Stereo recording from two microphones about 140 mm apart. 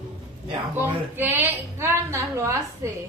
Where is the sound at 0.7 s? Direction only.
15° right (ahead or behind).